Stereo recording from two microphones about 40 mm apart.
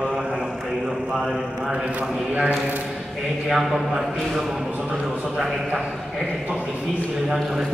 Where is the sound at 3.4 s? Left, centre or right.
Centre.